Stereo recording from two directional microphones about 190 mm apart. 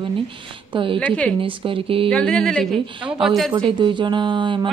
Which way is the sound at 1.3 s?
30° right (ahead or behind).